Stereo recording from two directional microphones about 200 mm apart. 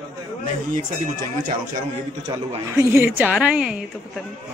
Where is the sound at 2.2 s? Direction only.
15° right (ahead or behind).